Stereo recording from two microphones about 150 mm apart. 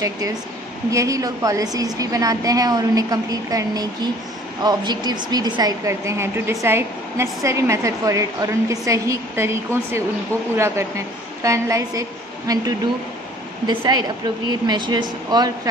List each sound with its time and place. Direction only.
0.8 s a woman's voice: 20° right (ahead or behind)